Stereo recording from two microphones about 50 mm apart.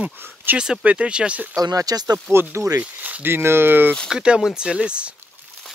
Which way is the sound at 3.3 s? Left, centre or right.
Right.